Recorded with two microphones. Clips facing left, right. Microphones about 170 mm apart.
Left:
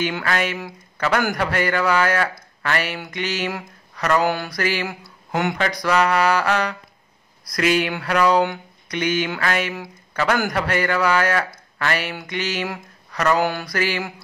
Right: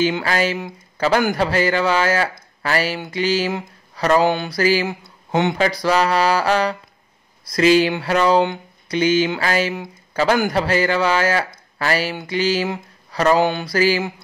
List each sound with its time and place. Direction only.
0.0 s a man's voice: 30° right (ahead or behind)